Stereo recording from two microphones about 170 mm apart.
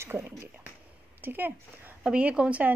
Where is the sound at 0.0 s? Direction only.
15° right (ahead or behind).